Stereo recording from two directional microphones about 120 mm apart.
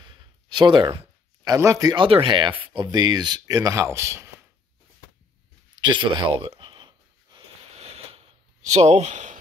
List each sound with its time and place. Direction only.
0.0 s a sound: 35° right (ahead or behind)
1.4 s speech: 30° right (ahead or behind)
2.0 s speech: 45° right (ahead or behind); by 4.3 s 25° right (ahead or behind)
5.8 s speech: 40° right (ahead or behind)
7.7 s a sound: 60° right (ahead or behind)
8.6 s speech: 65° right (ahead or behind); by 9.4 s 85° right